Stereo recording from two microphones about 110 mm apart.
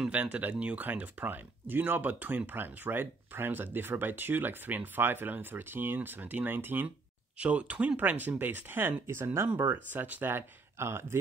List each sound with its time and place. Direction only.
0.0 s speech: 10° right (ahead or behind)